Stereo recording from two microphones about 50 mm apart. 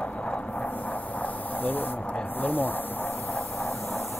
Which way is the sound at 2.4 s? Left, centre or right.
Left.